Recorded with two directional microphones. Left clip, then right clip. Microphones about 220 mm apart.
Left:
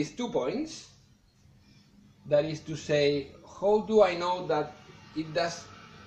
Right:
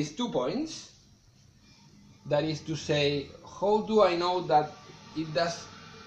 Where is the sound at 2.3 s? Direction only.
25° right (ahead or behind).